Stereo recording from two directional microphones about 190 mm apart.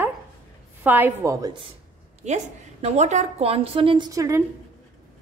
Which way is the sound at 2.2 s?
35° right (ahead or behind).